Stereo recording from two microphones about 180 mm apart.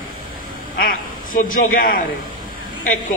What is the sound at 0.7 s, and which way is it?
A woman's voice, 50° left (ahead or behind).